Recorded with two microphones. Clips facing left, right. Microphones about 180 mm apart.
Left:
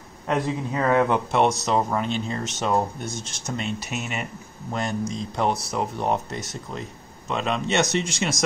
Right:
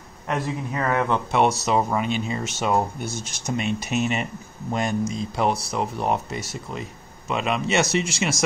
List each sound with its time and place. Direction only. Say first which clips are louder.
0.3 s speech: left 2 dB; 15° left (ahead or behind)
1.3 s speech: right 1 dB; 5° right (ahead or behind); by 4.3 s 25° right (ahead or behind)
4.7 s speech: right 2 dB; 10° right (ahead or behind)